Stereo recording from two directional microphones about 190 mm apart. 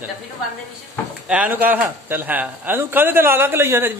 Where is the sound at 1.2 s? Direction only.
5° right (ahead or behind).